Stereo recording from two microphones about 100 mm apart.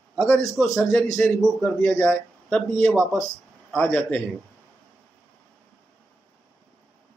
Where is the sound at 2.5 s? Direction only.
5° left (ahead or behind).